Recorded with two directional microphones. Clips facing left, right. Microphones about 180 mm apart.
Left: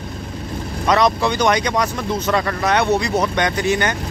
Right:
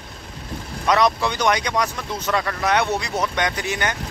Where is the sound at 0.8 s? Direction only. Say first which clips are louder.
Left 2 dB; 5° right (ahead or behind).